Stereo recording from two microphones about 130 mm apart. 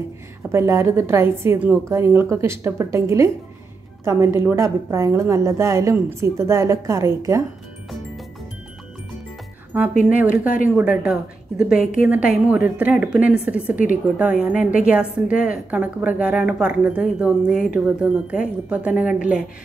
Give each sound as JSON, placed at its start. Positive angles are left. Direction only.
{"t": 0.5, "sound": "a woman's voice", "side_deg": -20}
{"t": 10.0, "sound": "speech", "side_deg": -10}